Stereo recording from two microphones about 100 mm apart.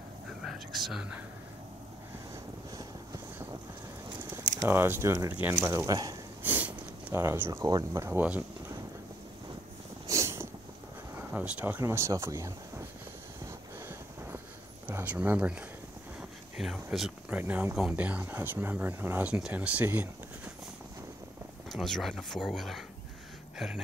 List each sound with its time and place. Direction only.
0.3 s speech: 5° right (ahead or behind)
4.6 s speech: 20° right (ahead or behind)
6.4 s sniff: 20° right (ahead or behind)
7.2 s speech: 25° right (ahead or behind)
7.6 s speech: 35° right (ahead or behind)
10.0 s a sound: 30° right (ahead or behind)
11.1 s speech: 15° right (ahead or behind)
11.8 s speech: 30° right (ahead or behind)
13.5 s a sound: 25° right (ahead or behind)
14.9 s speech: 15° right (ahead or behind)
16.2 s a sound: 5° right (ahead or behind)
17.3 s speech: 15° right (ahead or behind)
19.3 s speech: 10° right (ahead or behind)
21.6 s speech: centre (ahead or behind)